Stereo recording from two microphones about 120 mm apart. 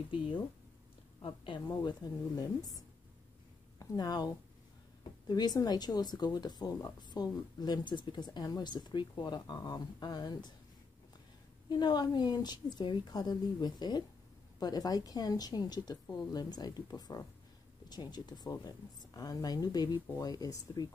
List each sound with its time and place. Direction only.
1.2 s speech: 40° left (ahead or behind)
3.8 s speech: 35° left (ahead or behind)
5.3 s speech: 35° left (ahead or behind)
11.7 s speech: 35° left (ahead or behind)